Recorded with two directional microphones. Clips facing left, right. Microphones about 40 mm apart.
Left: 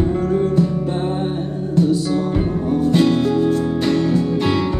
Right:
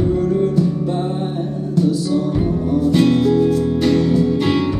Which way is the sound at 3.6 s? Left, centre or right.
Centre.